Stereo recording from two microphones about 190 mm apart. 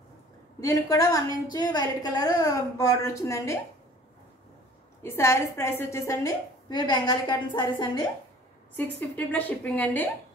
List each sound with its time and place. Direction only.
0.6 s a woman's voice: 15° left (ahead or behind)
5.0 s a woman's voice: 15° left (ahead or behind)
8.7 s a woman's voice: 10° left (ahead or behind)